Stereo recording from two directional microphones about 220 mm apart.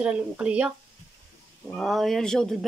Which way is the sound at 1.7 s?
Centre (ahead or behind).